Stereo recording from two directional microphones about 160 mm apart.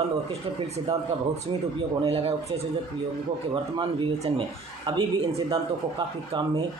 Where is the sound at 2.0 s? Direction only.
40° right (ahead or behind).